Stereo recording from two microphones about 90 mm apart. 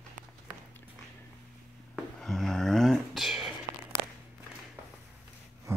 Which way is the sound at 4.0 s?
60° right (ahead or behind).